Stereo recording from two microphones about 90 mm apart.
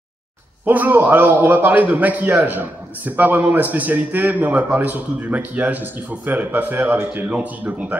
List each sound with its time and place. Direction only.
0.7 s a man's voice: 20° right (ahead or behind)